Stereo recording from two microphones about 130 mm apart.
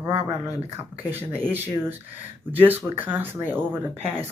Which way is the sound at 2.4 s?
15° right (ahead or behind).